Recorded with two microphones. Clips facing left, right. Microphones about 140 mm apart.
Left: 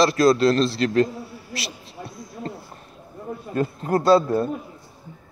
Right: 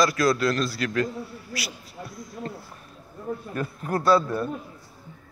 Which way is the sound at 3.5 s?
30° left (ahead or behind).